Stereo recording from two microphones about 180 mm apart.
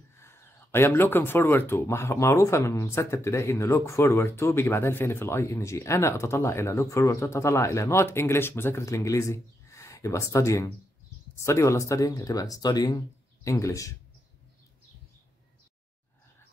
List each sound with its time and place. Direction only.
0.2 s speech: 15° left (ahead or behind)